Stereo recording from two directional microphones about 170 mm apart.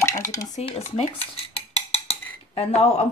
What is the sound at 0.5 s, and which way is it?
Dishes, 35° left (ahead or behind).